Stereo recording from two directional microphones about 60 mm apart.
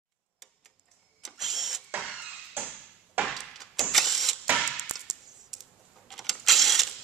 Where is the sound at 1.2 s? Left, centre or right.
Centre.